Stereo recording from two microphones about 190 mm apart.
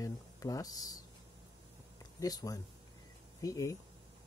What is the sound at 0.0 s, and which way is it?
Speech, 20° left (ahead or behind).